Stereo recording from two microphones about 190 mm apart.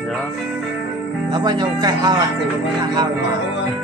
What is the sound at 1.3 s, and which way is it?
Speech, 20° right (ahead or behind).